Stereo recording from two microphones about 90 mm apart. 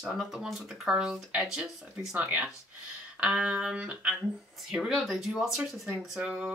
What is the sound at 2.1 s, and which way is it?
Speech, 20° right (ahead or behind).